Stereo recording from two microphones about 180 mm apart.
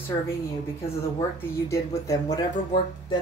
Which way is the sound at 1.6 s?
15° left (ahead or behind).